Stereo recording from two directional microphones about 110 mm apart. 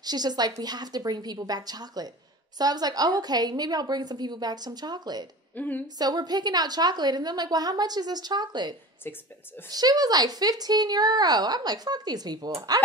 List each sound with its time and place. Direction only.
0.0 s speech: 40° right (ahead or behind)
5.6 s speech: 15° left (ahead or behind)
5.9 s speech: 40° right (ahead or behind)